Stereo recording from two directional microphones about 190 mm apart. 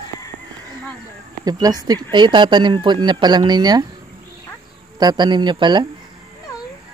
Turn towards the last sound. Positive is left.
turn(degrees=-25)  # may be behind; listen again after turning